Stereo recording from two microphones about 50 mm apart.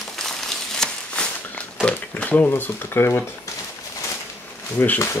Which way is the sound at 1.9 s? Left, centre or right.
Left.